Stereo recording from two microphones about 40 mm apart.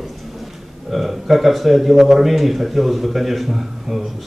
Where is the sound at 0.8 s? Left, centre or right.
Centre.